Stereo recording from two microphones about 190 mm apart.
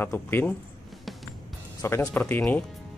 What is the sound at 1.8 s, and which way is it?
Speech, 15° left (ahead or behind).